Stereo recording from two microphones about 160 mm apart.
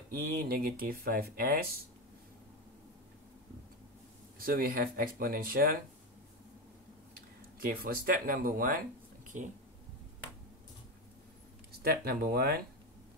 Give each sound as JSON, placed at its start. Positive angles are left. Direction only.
{"t": 0.1, "sound": "speech", "side_deg": -70}
{"t": 4.4, "sound": "speech", "side_deg": -65}
{"t": 7.2, "sound": "speech", "side_deg": -65}
{"t": 9.2, "sound": "a sound", "side_deg": -50}
{"t": 11.8, "sound": "speech", "side_deg": -75}